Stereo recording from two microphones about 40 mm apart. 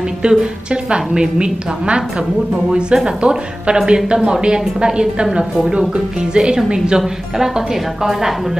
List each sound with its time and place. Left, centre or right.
0.2 s a woman's voice: right